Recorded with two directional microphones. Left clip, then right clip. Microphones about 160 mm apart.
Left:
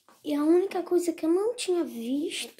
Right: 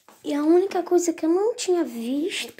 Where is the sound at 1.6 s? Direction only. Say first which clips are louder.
Right 5 dB; 5° right (ahead or behind).